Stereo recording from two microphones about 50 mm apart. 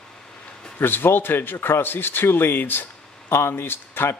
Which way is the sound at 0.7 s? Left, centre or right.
Left.